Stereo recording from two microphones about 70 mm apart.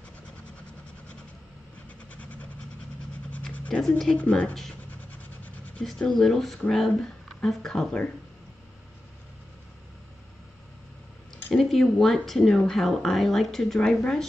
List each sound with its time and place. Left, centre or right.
3.5 s scratch: centre
4.2 s speech: centre
5.8 s speech: centre
11.5 s speech: centre